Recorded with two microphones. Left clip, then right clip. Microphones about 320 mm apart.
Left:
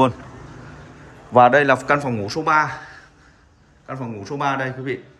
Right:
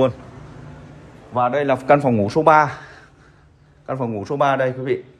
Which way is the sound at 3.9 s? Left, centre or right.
Centre.